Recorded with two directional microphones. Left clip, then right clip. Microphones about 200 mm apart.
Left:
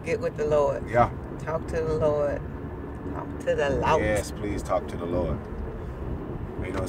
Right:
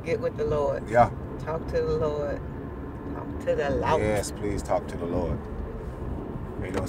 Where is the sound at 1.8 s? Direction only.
30° left (ahead or behind).